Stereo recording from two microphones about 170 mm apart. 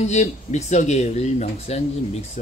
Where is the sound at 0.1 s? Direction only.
40° left (ahead or behind).